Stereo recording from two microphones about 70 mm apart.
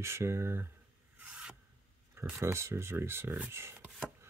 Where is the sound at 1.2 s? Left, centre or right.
Centre.